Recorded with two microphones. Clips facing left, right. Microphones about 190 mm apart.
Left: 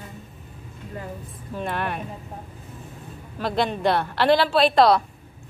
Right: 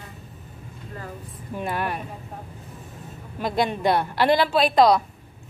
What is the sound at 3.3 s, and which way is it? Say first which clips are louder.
Speech: even; 15° right (ahead or behind).